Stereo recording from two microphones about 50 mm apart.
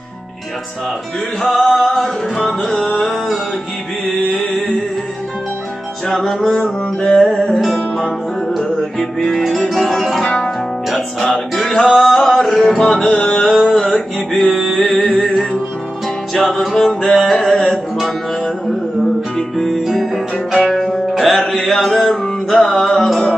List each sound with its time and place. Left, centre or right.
1.4 s music: centre
2.6 s music: centre
6.0 s music: centre
10.2 s music: centre
10.9 s music: centre
13.4 s a sound: centre
13.9 s music: centre
14.8 s music: centre
16.3 s music: centre
16.7 s music: centre
17.3 s a sound: centre
19.3 s music: centre